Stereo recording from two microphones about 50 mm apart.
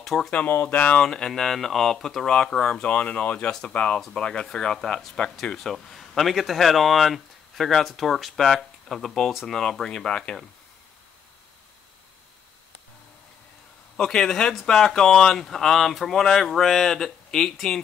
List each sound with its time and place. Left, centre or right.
0.0 s speech: centre
0.5 s speech: left
0.9 s speech: centre
2.2 s speech: centre
13.9 s speech: centre